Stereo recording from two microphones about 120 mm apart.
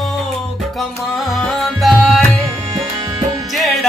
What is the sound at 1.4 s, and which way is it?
Music, centre (ahead or behind).